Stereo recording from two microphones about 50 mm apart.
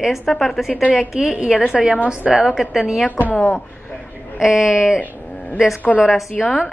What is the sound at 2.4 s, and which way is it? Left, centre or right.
Speech, centre.